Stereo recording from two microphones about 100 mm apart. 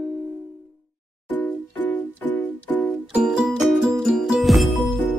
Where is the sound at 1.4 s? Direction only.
15° left (ahead or behind).